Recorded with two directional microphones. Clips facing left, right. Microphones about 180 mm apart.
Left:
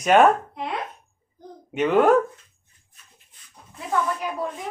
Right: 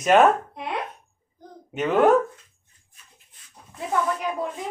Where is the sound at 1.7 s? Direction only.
Centre (ahead or behind).